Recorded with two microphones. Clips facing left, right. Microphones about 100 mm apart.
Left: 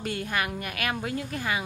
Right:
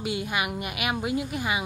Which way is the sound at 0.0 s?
10° right (ahead or behind).